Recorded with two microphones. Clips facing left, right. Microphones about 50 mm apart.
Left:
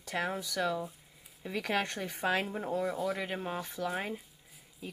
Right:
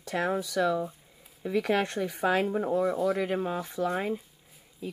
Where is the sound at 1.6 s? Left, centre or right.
Centre.